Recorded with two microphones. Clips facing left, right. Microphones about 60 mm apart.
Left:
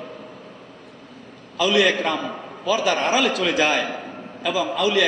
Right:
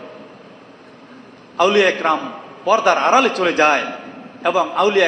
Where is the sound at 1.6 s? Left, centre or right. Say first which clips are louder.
Right 5 dB; right.